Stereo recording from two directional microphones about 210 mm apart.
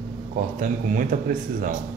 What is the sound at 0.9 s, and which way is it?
Speech, 40° right (ahead or behind).